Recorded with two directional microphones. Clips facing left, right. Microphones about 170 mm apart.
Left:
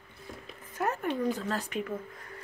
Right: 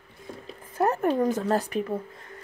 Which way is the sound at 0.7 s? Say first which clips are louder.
Right 7 dB; 40° right (ahead or behind).